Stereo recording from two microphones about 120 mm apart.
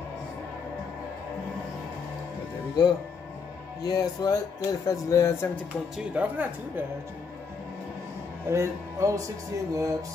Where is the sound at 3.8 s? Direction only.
30° left (ahead or behind).